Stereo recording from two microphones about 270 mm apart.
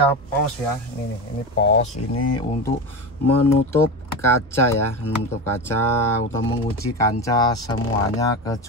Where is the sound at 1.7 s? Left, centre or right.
Centre.